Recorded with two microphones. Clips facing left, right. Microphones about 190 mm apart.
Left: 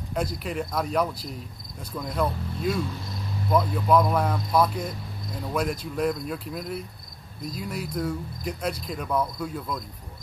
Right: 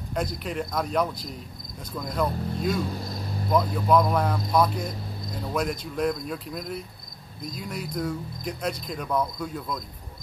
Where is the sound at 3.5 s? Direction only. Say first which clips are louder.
Even; 5° left (ahead or behind).